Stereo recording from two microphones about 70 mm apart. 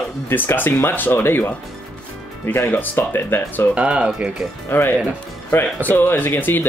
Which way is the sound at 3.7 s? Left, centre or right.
Centre.